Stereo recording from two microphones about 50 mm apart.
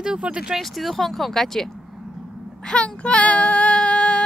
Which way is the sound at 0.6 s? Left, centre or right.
Centre.